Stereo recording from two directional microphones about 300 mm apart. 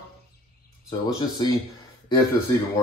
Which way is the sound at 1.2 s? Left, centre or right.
Centre.